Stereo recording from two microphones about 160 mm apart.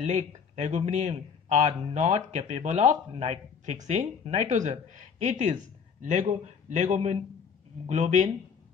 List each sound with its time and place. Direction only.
0.0 s speech: 50° right (ahead or behind)